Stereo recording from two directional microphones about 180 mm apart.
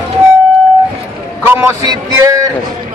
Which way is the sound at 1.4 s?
10° right (ahead or behind).